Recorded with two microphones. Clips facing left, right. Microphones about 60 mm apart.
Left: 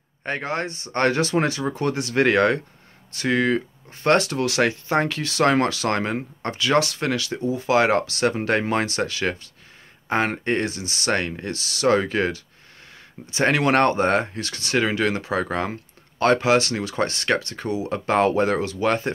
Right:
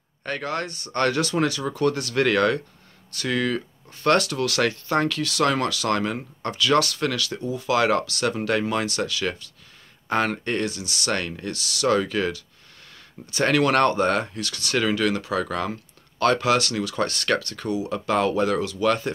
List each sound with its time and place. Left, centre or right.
0.2 s speech: left